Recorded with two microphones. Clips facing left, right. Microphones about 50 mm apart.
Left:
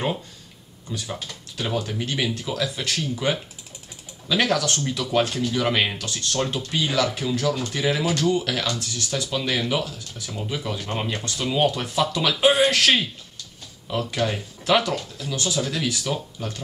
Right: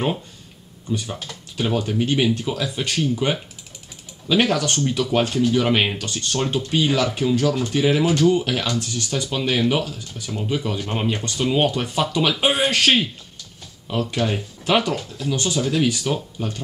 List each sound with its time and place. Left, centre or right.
1.7 s speech: centre
14.3 s speech: centre